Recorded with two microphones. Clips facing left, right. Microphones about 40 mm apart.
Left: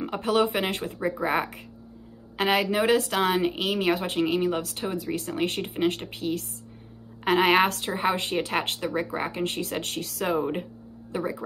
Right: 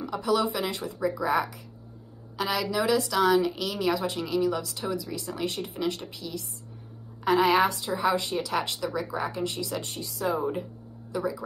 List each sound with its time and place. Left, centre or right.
0.0 s speech: left